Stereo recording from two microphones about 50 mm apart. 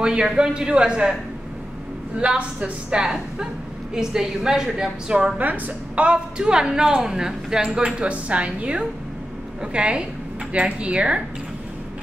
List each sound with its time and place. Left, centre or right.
0.0 s a woman's voice: centre
2.3 s a woman's voice: centre
5.4 s a woman's voice: right
6.0 s a woman's voice: centre
7.8 s a woman's voice: right